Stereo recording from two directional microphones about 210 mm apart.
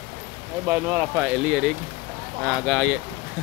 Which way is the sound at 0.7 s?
10° right (ahead or behind).